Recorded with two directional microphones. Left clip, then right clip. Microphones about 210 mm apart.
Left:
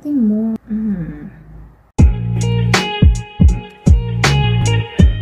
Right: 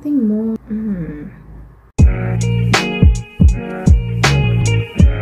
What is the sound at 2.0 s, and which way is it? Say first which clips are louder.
Music: even; centre (ahead or behind).